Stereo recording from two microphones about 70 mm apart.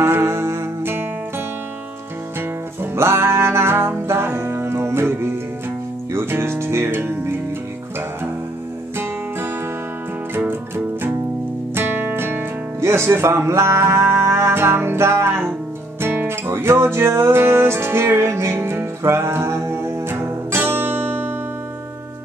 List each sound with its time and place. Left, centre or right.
0.0 s music: right
2.8 s music: right
11.7 s music: right